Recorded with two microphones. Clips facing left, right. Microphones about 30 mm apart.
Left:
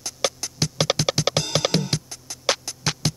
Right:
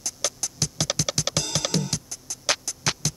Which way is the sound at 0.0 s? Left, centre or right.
Left.